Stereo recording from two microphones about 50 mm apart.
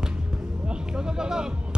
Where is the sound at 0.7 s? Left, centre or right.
Centre.